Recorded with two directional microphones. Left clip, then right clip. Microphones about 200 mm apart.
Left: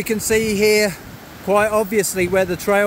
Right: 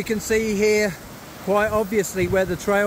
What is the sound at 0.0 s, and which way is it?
Speech, 10° left (ahead or behind).